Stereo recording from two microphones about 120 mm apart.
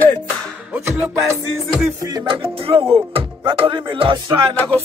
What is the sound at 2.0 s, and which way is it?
Music, 30° right (ahead or behind).